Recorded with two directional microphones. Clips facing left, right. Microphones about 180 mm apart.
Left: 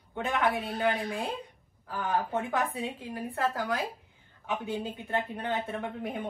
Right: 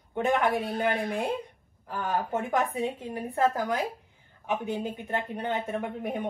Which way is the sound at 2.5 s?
15° right (ahead or behind).